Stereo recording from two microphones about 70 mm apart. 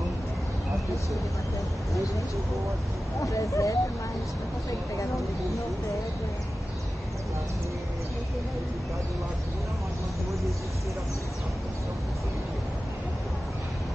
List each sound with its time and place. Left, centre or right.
3.2 s speech: left